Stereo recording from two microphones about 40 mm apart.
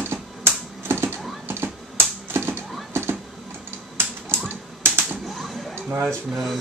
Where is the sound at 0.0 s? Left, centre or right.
Right.